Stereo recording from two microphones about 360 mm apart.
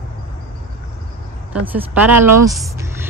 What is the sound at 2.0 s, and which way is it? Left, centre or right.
Speech, right.